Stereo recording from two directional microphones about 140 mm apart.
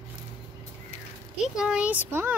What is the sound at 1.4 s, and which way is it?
Speech, 5° right (ahead or behind).